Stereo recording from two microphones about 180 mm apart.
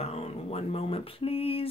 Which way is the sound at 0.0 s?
35° left (ahead or behind).